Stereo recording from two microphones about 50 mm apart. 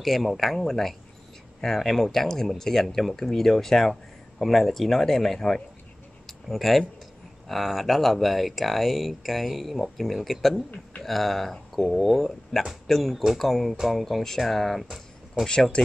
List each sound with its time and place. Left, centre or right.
0.0 s speech: centre
6.2 s a sound: centre
7.4 s speech: centre
15.4 s speech: centre